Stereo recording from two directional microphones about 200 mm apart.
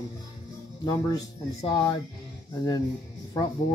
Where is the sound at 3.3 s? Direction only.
15° left (ahead or behind).